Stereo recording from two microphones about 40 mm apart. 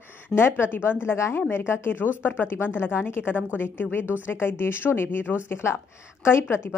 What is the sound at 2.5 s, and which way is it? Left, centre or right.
A woman's voice, left.